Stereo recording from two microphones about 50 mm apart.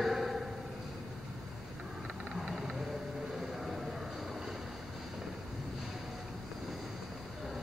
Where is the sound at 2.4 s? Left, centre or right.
Centre.